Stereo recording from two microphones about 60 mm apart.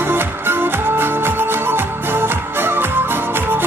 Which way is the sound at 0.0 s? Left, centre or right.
Right.